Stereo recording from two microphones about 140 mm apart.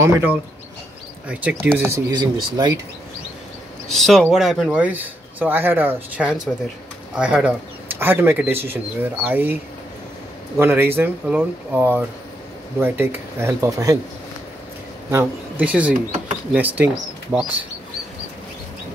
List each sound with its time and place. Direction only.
0.0 s speech: 15° right (ahead or behind)
2.0 s speech: 30° right (ahead or behind)
3.9 s speech: centre (ahead or behind); by 9.6 s 15° right (ahead or behind)
10.6 s speech: 15° right (ahead or behind)
15.0 s speech: 15° right (ahead or behind)